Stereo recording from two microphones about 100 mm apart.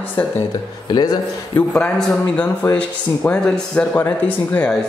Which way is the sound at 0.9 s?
45° left (ahead or behind).